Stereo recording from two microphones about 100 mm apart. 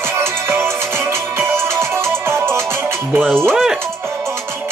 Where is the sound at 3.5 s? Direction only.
Centre (ahead or behind).